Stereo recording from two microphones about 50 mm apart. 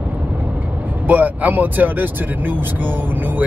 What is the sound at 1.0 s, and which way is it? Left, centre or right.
Speech, right.